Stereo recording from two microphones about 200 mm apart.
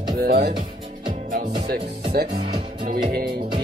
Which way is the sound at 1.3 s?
45° right (ahead or behind).